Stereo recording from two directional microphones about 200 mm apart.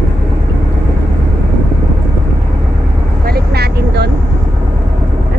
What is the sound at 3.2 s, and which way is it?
Vehicle, 50° right (ahead or behind).